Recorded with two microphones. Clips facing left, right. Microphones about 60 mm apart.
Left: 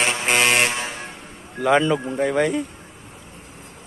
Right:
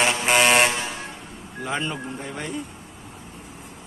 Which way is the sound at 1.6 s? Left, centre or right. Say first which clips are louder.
Left 10 dB; left.